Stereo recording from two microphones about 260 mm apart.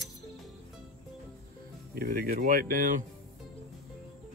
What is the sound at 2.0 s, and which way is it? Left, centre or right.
Speech, right.